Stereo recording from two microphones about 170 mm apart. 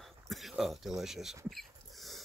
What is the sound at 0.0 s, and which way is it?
Dog, centre (ahead or behind).